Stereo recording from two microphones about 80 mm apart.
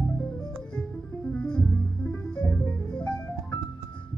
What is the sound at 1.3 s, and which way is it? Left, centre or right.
Music, centre.